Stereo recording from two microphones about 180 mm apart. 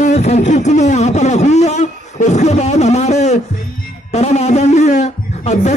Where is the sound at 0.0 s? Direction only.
40° left (ahead or behind).